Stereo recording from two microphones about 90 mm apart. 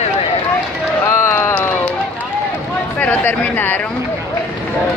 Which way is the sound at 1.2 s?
30° left (ahead or behind).